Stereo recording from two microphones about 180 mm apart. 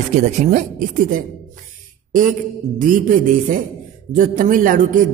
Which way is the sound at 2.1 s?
50° right (ahead or behind).